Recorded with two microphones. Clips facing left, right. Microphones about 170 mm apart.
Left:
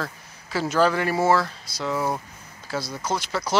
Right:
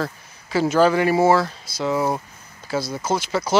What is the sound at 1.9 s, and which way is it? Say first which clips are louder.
Speech: right 4 dB; 25° right (ahead or behind).